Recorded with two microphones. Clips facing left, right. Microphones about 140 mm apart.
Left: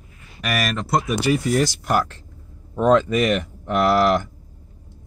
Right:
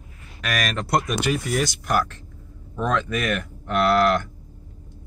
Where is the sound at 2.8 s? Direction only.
20° left (ahead or behind).